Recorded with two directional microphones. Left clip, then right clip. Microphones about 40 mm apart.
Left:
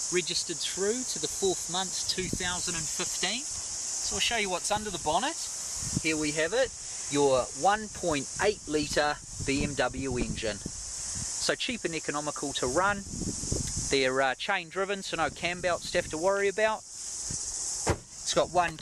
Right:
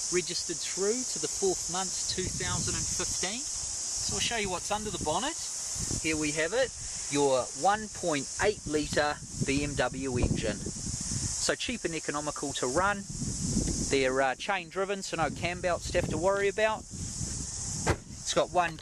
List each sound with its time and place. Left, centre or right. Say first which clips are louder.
0.2 s speech: left 3 dB; left
1.4 s speech: left 1 dB; left
2.3 s speech: left 1 dB; left
4.1 s speech: left 3 dB; left
4.6 s speech: left 2 dB; left
6.0 s speech: left 2 dB; left
7.7 s speech: left 1 dB; left
8.5 s speech: left 1 dB; centre
13.8 s speech: left 1 dB; centre
15.0 s speech: left 1 dB; right
16.1 s speech: even; centre
17.9 s vehicle: even; right
18.2 s speech: left 1 dB; centre